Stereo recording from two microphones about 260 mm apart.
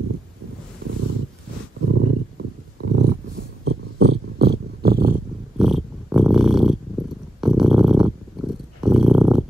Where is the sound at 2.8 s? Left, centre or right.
Right.